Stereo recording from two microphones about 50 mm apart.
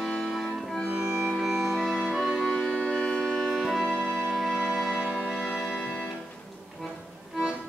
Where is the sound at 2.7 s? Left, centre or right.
Left.